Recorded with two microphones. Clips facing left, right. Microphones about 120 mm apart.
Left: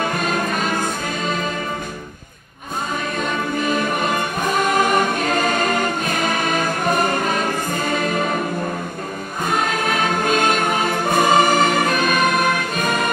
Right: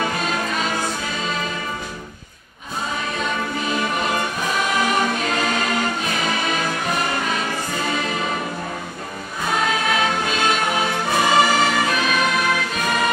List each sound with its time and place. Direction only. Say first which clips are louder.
0.0 s music: left 2 dB; 50° left (ahead or behind)
3.2 s music: left 3 dB; 50° left (ahead or behind)
9.4 s music: left 1 dB; 50° left (ahead or behind)